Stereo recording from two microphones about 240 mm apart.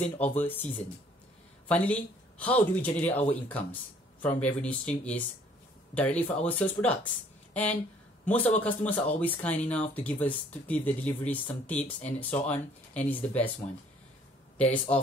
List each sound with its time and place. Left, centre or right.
0.2 s speech: centre
1.7 s speech: centre
11.8 s speech: left
12.2 s speech: centre
14.6 s speech: centre